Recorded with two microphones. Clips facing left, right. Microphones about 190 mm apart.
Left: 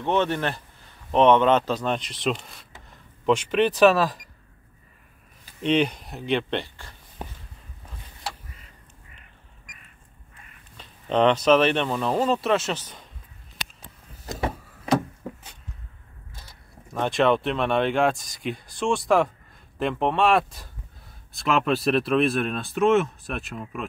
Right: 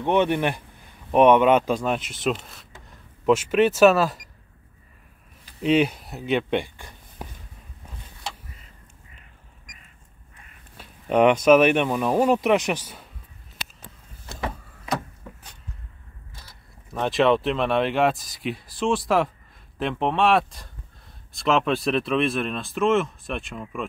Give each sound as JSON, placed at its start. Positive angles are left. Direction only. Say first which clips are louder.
{"t": 0.0, "sound": "speech", "louder": "right 3 dB", "side_deg": -15}
{"t": 5.6, "sound": "speech", "louder": "right 2 dB", "side_deg": -5}
{"t": 10.8, "sound": "speech", "louder": "right 2 dB", "side_deg": -10}
{"t": 14.2, "sound": "vehicle", "louder": "left 3 dB", "side_deg": 40}
{"t": 16.9, "sound": "speech", "louder": "right 1 dB", "side_deg": 0}